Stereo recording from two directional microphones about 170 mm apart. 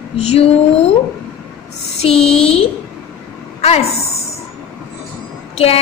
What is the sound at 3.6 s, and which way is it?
Speech, 35° left (ahead or behind).